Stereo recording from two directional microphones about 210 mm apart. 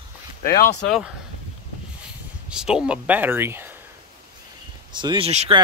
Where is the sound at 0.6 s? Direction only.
5° left (ahead or behind).